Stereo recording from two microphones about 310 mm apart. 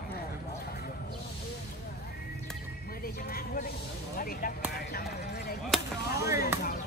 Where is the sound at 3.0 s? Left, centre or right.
Left.